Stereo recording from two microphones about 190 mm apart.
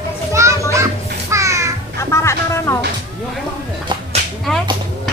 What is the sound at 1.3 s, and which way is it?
Music, 15° right (ahead or behind).